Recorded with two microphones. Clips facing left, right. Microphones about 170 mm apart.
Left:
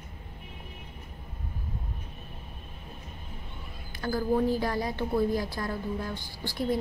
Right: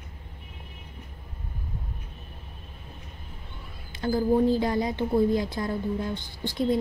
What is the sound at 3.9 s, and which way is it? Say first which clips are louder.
A woman's voice: right 4 dB; 25° right (ahead or behind).